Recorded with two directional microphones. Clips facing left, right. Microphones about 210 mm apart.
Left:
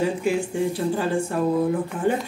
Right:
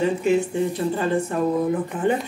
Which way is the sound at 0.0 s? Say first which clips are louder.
Right 3 dB; 10° left (ahead or behind).